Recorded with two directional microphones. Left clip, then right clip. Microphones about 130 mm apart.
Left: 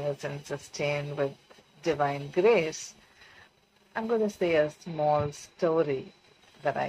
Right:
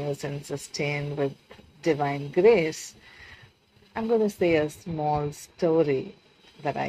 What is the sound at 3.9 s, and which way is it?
A woman's voice, 30° right (ahead or behind).